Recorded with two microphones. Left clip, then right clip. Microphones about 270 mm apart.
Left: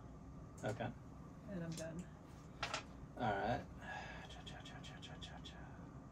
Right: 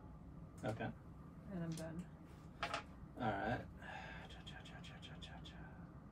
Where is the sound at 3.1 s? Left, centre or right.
Centre.